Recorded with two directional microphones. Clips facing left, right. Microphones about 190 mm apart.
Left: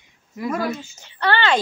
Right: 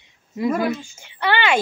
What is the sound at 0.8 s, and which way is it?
Speech, 10° right (ahead or behind).